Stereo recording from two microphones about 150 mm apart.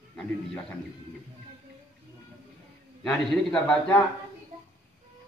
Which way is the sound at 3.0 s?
5° left (ahead or behind).